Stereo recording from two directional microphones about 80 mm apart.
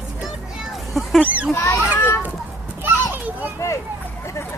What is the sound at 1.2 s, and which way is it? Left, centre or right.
Speech, centre.